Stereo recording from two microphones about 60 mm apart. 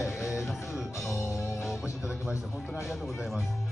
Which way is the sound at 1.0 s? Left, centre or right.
Left.